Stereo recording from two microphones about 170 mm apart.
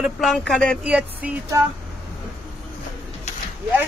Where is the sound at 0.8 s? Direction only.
5° right (ahead or behind).